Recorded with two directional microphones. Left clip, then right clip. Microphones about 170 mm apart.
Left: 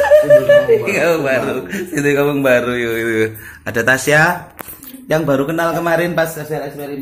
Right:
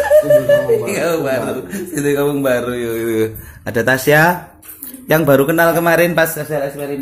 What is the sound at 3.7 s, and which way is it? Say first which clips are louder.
A man's voice: even; 35° right (ahead or behind).